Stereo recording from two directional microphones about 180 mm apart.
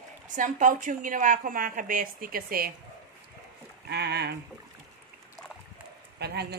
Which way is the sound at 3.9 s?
65° right (ahead or behind).